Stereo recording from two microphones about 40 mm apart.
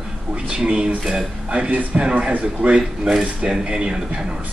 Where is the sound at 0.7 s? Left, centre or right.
Right.